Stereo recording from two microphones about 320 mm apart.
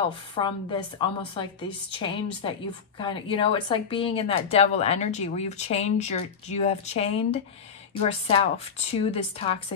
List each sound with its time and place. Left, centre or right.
0.4 s a woman's voice: centre